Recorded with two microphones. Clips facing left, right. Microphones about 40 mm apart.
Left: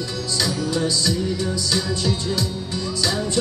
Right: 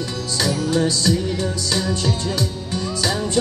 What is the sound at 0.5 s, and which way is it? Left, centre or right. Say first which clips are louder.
Music: right 5 dB; right.